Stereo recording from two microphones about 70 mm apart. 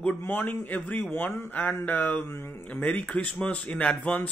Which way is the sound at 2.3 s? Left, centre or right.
Left.